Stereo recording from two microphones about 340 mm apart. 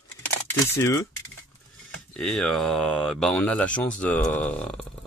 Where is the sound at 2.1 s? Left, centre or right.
Centre.